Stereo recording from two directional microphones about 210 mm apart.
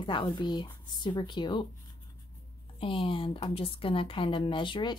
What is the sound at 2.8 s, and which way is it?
Speech, 25° left (ahead or behind).